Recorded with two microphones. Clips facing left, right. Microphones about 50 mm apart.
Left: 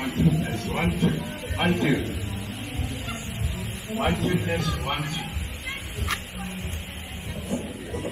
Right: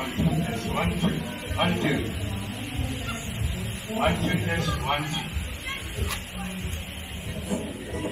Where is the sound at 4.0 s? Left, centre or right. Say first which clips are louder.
Even; centre.